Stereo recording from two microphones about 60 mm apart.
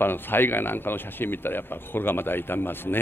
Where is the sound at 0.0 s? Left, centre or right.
Left.